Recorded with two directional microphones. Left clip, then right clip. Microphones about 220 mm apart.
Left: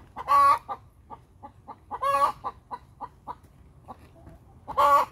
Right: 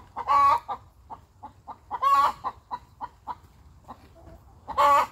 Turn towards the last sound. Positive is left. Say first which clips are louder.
# even
turn(degrees=30)  # may be behind; listen again after turning